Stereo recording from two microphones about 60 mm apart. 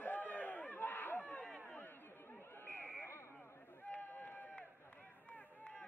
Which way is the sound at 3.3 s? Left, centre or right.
Left.